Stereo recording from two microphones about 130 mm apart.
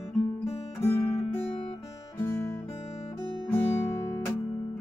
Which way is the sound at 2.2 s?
15° left (ahead or behind).